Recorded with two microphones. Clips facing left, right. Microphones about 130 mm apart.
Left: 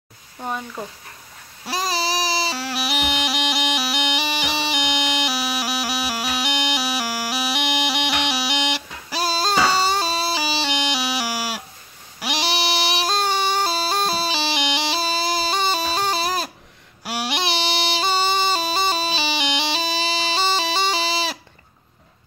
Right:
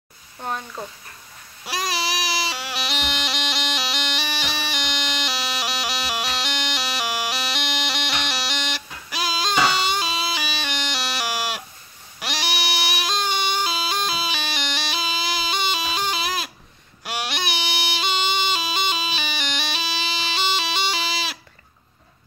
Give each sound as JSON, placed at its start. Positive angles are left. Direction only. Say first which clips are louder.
{"t": 0.4, "sound": "speech", "louder": "left 1 dB", "side_deg": 5}
{"t": 1.7, "sound": "baby cry", "louder": "left 3 dB", "side_deg": 30}
{"t": 2.6, "sound": "bagpipes", "louder": "left 4 dB", "side_deg": 5}
{"t": 4.7, "sound": "music", "louder": "left 5 dB", "side_deg": 10}
{"t": 9.1, "sound": "music", "louder": "left 3 dB", "side_deg": 35}
{"t": 10.7, "sound": "a sound", "louder": "left 5 dB", "side_deg": 15}
{"t": 12.4, "sound": "music", "louder": "left 4 dB", "side_deg": 30}
{"t": 15.0, "sound": "music", "louder": "left 4 dB", "side_deg": 40}
{"t": 17.0, "sound": "a sound", "louder": "left 3 dB", "side_deg": 5}
{"t": 17.4, "sound": "music", "louder": "left 4 dB", "side_deg": 30}
{"t": 19.8, "sound": "music", "louder": "left 4 dB", "side_deg": 45}